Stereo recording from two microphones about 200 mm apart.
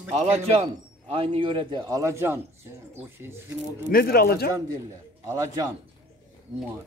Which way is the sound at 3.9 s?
50° left (ahead or behind).